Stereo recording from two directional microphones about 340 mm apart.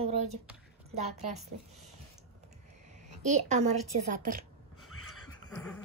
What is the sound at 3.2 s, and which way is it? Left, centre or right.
A woman's voice, right.